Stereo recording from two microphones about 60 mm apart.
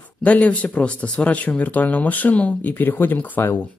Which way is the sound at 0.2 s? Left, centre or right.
Left.